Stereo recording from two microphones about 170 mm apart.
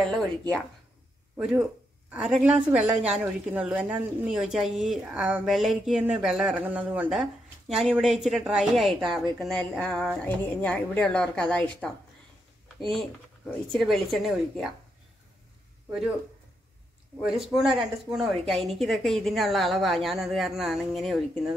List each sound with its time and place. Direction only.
0.0 s a woman's voice: centre (ahead or behind)
13.7 s a woman's voice: centre (ahead or behind)
17.2 s a woman's voice: 5° right (ahead or behind)